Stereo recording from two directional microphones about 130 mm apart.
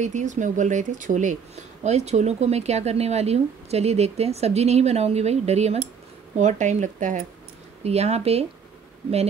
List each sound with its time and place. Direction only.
0.0 s speech: 70° right (ahead or behind)
6.3 s speech: 70° right (ahead or behind)
7.8 s speech: 55° right (ahead or behind)